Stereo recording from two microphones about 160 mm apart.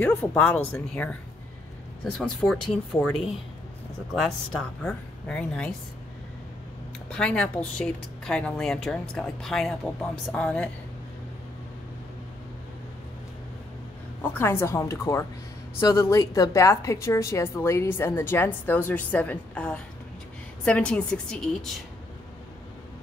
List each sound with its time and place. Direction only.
0.0 s a woman's voice: 10° left (ahead or behind)
2.1 s a woman's voice: centre (ahead or behind)
7.1 s a woman's voice: 5° left (ahead or behind)
14.4 s a woman's voice: 15° left (ahead or behind)